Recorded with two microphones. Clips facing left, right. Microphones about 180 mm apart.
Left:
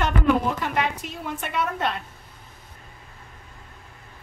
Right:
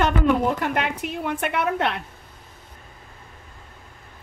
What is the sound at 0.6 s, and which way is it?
A woman's voice, 60° right (ahead or behind).